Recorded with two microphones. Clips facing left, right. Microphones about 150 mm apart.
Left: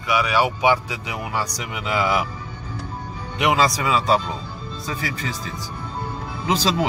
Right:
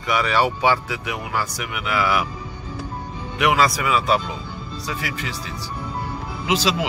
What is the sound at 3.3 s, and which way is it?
Speech, 25° left (ahead or behind).